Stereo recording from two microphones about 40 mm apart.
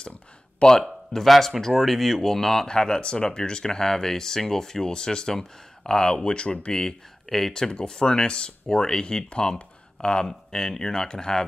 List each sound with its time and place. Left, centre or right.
0.6 s speech: centre
1.1 s speech: centre
2.7 s speech: left
6.7 s speech: centre
7.7 s speech: left